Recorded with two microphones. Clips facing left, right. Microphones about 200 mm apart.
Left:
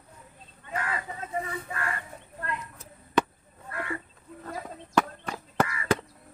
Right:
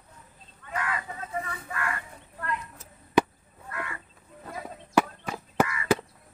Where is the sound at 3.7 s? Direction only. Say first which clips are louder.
Left 3 dB; 30° left (ahead or behind).